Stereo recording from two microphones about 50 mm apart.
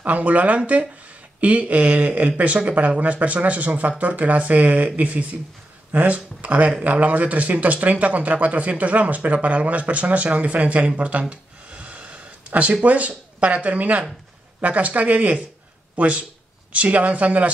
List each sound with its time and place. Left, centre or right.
0.0 s speech: right